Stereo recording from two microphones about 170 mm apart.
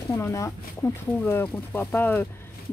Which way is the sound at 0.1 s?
20° left (ahead or behind).